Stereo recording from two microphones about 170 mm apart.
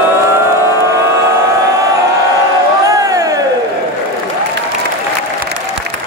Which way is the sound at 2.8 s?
20° right (ahead or behind).